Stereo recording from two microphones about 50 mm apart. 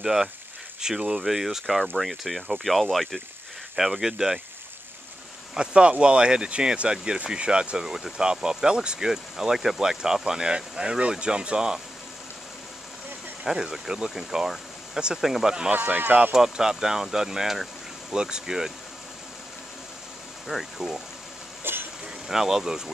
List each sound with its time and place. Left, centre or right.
0.0 s speech: centre
5.5 s speech: centre
13.4 s speech: centre
15.7 s speech: right
16.3 s speech: centre
20.4 s speech: centre
21.7 s a sound: right
22.3 s speech: centre